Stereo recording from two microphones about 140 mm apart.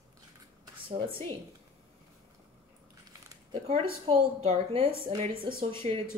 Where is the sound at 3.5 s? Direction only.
45° right (ahead or behind).